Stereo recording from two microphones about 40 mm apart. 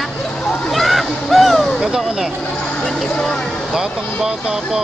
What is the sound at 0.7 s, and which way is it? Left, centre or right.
Music, centre.